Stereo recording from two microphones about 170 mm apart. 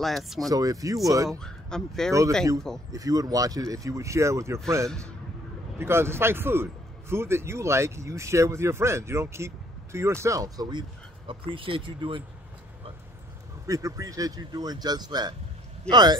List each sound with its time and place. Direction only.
0.0 s speech: centre (ahead or behind)
0.5 s speech: 20° right (ahead or behind)
1.4 s speech: 5° left (ahead or behind)
2.9 s speech: 20° right (ahead or behind)
5.8 s speech: 15° right (ahead or behind); by 12.2 s 30° right (ahead or behind)
13.7 s speech: 20° right (ahead or behind)